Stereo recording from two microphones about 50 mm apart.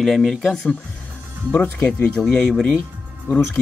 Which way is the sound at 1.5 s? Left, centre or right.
Left.